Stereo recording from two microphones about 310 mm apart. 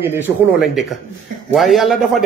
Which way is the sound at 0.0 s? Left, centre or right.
Centre.